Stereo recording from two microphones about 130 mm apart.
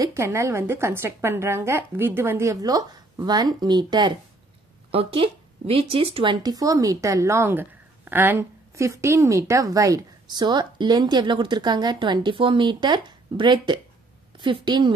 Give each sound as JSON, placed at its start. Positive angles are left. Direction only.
{"t": 0.0, "sound": "a woman's voice", "side_deg": -20}
{"t": 4.9, "sound": "a woman's voice", "side_deg": -45}